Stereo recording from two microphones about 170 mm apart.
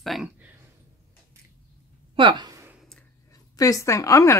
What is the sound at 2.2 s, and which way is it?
Speech, 30° right (ahead or behind).